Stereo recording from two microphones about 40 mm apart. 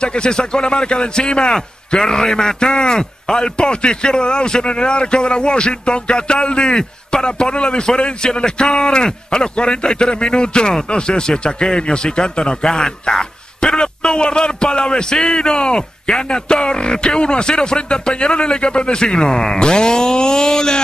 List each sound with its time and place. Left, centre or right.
0.0 s a man's voice: left